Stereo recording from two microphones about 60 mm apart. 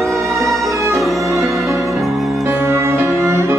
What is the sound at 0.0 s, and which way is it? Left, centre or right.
Music, centre.